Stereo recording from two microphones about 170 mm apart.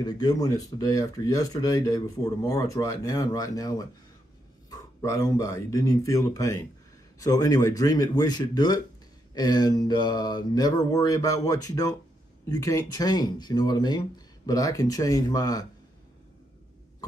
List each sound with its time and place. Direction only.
0.0 s speech: 25° left (ahead or behind)